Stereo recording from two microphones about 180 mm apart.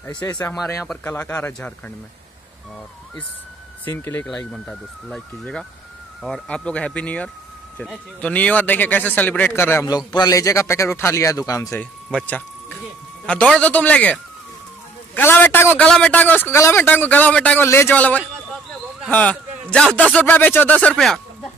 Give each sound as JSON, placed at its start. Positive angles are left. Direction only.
{"t": 0.4, "sound": "a man's voice", "side_deg": 15}
{"t": 3.8, "sound": "a man's voice", "side_deg": 15}